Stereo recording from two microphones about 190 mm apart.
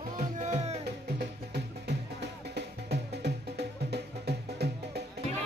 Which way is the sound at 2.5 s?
60° right (ahead or behind).